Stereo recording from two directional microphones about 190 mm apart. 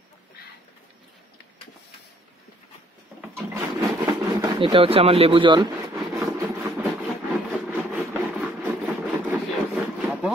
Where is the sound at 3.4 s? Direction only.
10° right (ahead or behind).